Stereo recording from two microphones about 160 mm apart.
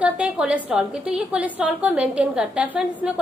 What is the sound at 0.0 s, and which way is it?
A woman's voice, 10° right (ahead or behind).